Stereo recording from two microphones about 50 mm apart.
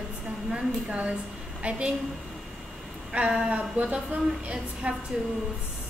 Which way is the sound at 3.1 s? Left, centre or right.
Right.